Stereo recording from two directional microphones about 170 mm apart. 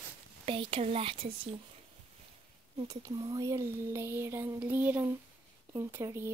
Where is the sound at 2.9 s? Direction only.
20° right (ahead or behind).